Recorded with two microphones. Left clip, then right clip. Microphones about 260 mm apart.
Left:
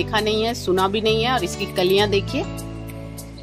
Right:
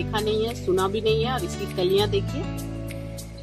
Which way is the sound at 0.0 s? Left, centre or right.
Left.